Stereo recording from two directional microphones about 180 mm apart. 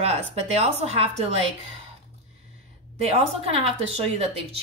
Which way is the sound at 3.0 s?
35° right (ahead or behind).